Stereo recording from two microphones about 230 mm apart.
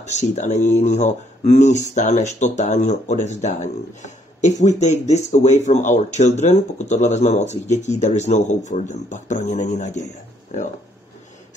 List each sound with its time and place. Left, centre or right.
0.0 s speech: left